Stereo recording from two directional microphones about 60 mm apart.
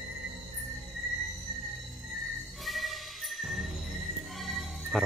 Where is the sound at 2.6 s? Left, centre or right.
Centre.